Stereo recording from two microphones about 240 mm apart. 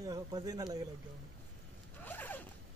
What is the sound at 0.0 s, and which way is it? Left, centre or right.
Speech, centre.